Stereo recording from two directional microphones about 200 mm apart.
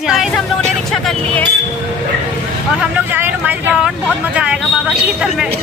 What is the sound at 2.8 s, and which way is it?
Vehicle, 10° right (ahead or behind).